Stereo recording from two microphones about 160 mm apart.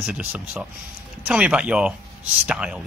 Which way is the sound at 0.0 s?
10° right (ahead or behind).